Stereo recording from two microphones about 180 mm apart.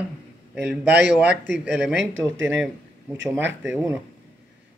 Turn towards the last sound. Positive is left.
turn(degrees=-10)  # may be behind; listen again after turning